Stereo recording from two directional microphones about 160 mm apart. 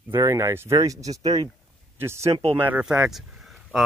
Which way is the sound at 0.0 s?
15° right (ahead or behind).